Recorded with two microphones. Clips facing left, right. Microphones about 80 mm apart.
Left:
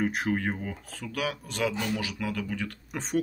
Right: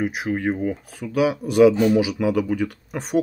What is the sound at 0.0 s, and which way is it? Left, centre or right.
Speech, centre.